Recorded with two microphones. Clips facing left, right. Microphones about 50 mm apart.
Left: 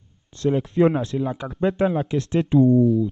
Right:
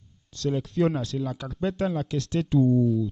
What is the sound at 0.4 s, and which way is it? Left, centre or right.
Speech, left.